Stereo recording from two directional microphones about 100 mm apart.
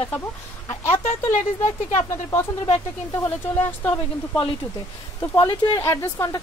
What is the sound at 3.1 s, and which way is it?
Speech, 30° left (ahead or behind).